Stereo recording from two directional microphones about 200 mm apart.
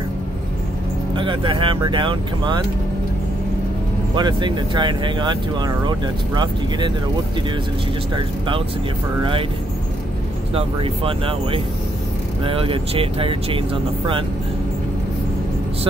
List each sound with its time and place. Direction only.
1.1 s speech: 25° right (ahead or behind)
4.1 s speech: 25° right (ahead or behind)
10.5 s speech: 30° right (ahead or behind)